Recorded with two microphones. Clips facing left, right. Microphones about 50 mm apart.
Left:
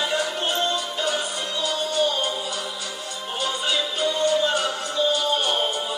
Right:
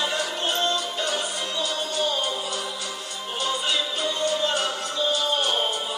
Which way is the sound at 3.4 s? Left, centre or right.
Centre.